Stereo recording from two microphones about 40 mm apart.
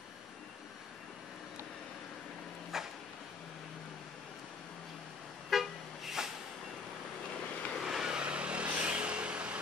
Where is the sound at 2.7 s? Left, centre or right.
Centre.